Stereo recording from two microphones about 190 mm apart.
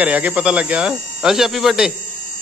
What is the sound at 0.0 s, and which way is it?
Speech, 5° right (ahead or behind).